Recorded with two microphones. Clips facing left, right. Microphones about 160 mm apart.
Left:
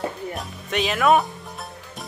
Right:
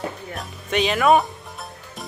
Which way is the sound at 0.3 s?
Centre (ahead or behind).